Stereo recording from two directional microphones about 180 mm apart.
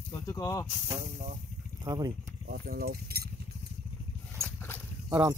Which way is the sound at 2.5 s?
55° right (ahead or behind).